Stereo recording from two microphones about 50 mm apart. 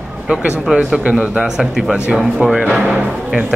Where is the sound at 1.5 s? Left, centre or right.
Centre.